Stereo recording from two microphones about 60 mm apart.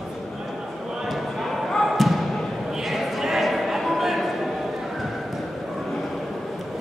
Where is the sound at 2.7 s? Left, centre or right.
Centre.